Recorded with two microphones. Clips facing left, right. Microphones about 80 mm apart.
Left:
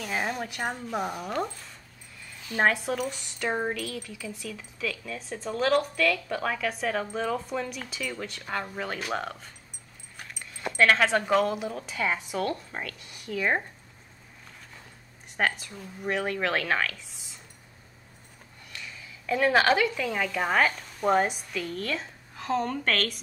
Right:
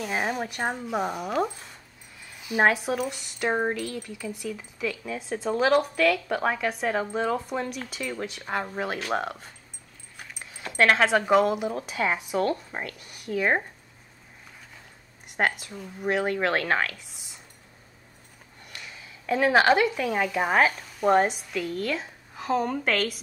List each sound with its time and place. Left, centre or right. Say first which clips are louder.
0.0 s a woman's voice: right 2 dB; centre
10.1 s dog: right 1 dB; centre
11.2 s a woman's voice: right 3 dB; centre
12.3 s speech: right 4 dB; right
15.2 s a woman's voice: right 2 dB; centre
16.7 s a sound: right 2 dB; centre
18.7 s a woman's voice: even; centre